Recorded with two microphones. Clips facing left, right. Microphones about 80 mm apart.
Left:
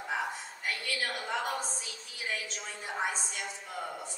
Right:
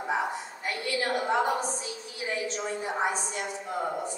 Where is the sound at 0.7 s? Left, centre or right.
Right.